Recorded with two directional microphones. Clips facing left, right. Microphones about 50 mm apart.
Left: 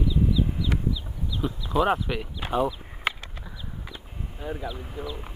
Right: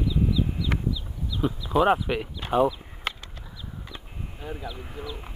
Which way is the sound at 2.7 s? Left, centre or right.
Centre.